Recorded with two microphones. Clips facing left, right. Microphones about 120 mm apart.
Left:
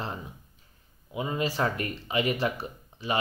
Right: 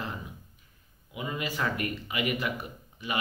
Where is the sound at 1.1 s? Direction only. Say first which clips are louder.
Left 5 dB; 30° left (ahead or behind).